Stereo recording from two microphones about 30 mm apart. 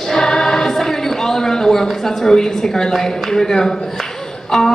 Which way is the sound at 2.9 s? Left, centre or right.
Centre.